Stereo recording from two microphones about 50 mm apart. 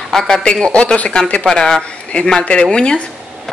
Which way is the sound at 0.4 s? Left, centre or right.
Left.